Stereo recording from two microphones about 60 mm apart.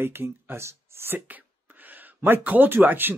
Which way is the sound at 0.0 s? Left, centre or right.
Right.